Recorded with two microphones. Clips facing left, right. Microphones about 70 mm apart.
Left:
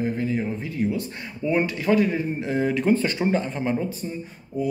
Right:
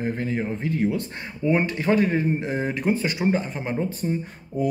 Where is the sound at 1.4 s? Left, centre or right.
Right.